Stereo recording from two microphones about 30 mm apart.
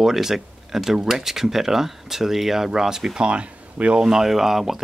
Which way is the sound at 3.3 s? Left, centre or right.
Right.